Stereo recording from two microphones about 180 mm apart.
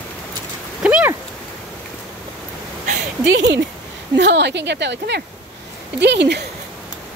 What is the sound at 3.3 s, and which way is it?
Speech, 80° right.